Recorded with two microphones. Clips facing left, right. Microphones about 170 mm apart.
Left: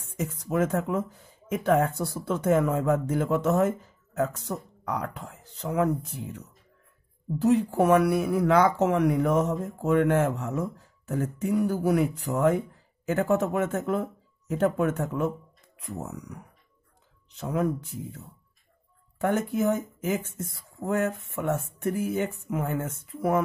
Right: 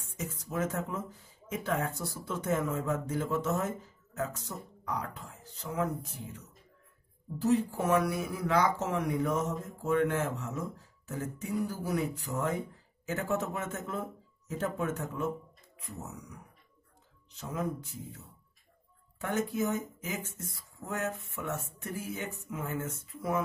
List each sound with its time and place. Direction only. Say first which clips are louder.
0.4 s speech: left 8 dB; 65° left (ahead or behind)
7.3 s speech: left 6 dB; 65° left (ahead or behind)
17.4 s speech: left 8 dB; 60° left (ahead or behind)
19.1 s speech: left 6 dB; 55° left (ahead or behind)